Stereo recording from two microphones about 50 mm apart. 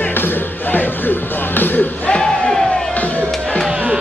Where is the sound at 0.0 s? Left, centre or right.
Left.